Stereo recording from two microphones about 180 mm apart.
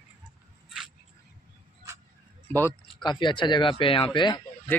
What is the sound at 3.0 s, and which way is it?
Speech, 25° left (ahead or behind).